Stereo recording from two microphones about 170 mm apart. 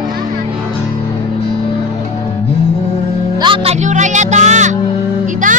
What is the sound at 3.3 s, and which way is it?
Music, 30° right (ahead or behind).